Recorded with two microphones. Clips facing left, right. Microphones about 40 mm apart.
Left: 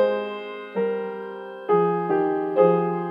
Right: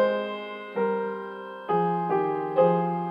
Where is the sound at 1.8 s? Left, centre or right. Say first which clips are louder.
Left 2 dB; centre.